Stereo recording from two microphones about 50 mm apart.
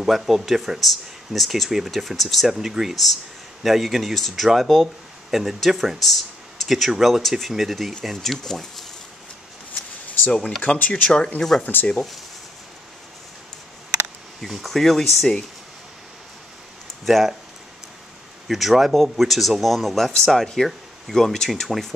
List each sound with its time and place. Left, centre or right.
0.0 s speech: centre
10.6 s speech: left
11.6 s speech: left
11.9 s speech: centre
14.4 s speech: centre
17.0 s speech: centre
18.5 s speech: centre